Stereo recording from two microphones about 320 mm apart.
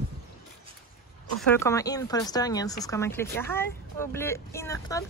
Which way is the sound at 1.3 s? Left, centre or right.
Centre.